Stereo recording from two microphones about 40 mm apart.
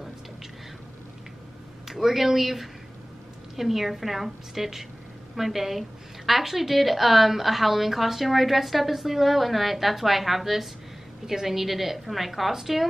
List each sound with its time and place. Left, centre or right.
1.9 s a woman's voice: centre